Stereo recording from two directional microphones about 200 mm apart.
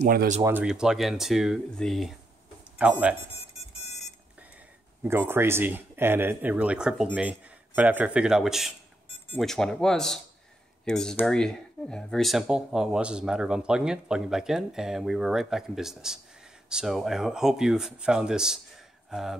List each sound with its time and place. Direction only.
0.0 s speech: 45° right (ahead or behind)
0.4 s speech: 10° right (ahead or behind)
5.0 s speech: 10° right (ahead or behind)